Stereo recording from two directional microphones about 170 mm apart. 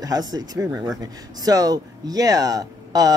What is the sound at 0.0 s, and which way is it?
Speech, 25° right (ahead or behind).